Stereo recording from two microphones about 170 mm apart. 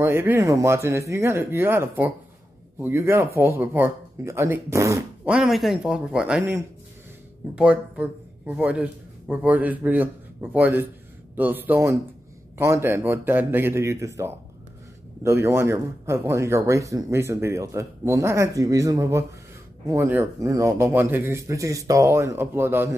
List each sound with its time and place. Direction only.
0.0 s speech: 15° right (ahead or behind)
5.3 s speech: centre (ahead or behind)